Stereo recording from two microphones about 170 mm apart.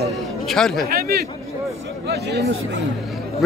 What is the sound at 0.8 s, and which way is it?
A man's voice, 65° right (ahead or behind).